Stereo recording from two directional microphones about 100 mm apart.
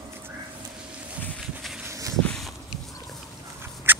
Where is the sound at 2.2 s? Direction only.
5° left (ahead or behind).